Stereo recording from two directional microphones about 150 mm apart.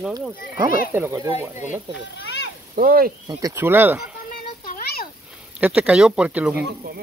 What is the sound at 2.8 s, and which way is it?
Speech, 75° right (ahead or behind).